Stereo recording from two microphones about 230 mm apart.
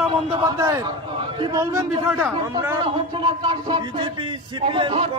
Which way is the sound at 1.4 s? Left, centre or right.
Centre.